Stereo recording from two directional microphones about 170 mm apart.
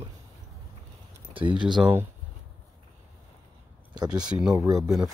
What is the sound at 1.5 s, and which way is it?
Speech, 25° right (ahead or behind).